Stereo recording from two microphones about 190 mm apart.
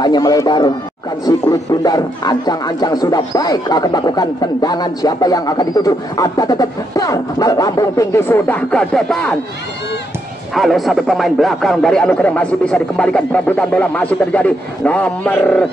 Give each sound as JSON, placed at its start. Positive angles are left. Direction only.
{"t": 0.0, "sound": "speech", "side_deg": 20}
{"t": 10.5, "sound": "speech", "side_deg": 0}